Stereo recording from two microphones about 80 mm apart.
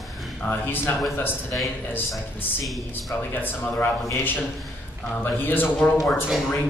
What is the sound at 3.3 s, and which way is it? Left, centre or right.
Speech, left.